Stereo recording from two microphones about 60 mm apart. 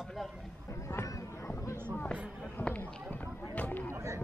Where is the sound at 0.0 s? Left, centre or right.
Centre.